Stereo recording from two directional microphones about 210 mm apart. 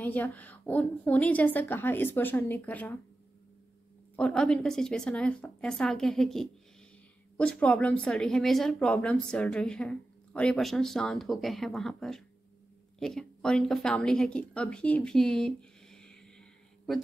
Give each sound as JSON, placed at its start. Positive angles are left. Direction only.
{"t": 0.0, "sound": "a woman's voice", "side_deg": 10}
{"t": 4.2, "sound": "speech", "side_deg": 5}